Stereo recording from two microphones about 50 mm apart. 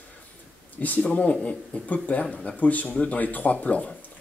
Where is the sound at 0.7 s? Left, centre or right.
Left.